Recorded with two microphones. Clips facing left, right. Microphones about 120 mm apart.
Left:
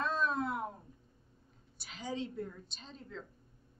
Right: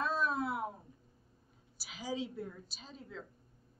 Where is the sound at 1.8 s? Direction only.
5° right (ahead or behind).